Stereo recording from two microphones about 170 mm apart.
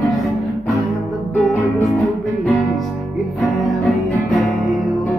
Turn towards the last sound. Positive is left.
turn(degrees=0)  # may be behind; listen again after turning